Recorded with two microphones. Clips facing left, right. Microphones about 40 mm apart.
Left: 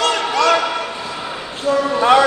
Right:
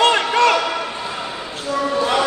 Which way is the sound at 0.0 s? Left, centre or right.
Right.